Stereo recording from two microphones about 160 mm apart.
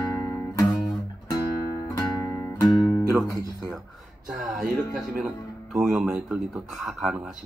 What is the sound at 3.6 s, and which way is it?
Speech, centre (ahead or behind).